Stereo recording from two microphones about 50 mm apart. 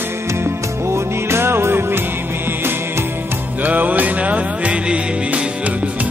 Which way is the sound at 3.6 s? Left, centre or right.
Right.